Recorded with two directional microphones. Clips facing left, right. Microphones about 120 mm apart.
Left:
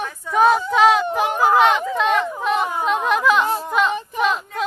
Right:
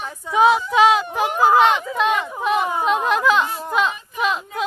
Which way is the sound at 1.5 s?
5° right (ahead or behind).